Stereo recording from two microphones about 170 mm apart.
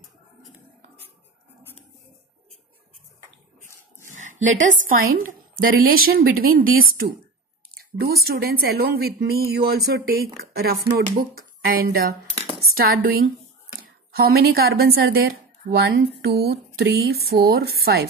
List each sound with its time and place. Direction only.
4.1 s a woman's voice: 45° right (ahead or behind)
16.2 s speech: 70° right (ahead or behind)